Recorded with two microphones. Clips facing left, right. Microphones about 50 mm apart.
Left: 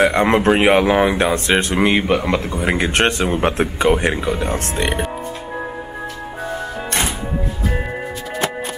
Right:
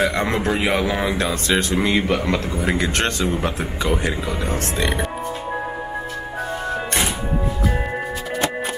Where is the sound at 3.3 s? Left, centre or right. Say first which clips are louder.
Left 5 dB; left.